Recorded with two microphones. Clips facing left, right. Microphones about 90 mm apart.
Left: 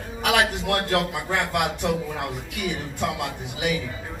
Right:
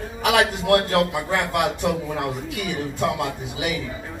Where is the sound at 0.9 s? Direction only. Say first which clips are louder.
Right 3 dB; 15° right (ahead or behind).